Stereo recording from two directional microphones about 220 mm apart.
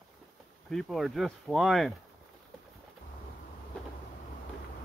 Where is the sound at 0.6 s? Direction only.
Centre (ahead or behind).